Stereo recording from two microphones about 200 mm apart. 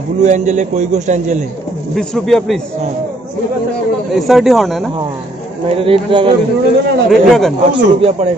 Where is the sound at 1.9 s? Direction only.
Centre (ahead or behind).